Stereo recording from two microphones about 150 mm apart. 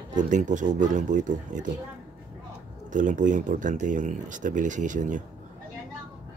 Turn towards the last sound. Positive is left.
turn(degrees=-55)  # may be behind; listen again after turning